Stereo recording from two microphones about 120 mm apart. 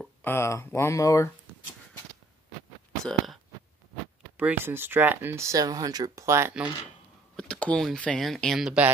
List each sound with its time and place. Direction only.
0.2 s speech: 20° left (ahead or behind)
3.0 s a sound: 5° left (ahead or behind)
4.4 s speech: 15° right (ahead or behind)
7.3 s speech: 5° left (ahead or behind)